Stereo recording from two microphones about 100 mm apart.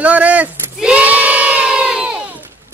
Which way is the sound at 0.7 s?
10° right (ahead or behind).